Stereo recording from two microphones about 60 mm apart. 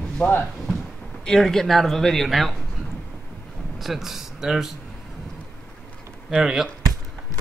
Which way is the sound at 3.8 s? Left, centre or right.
Centre.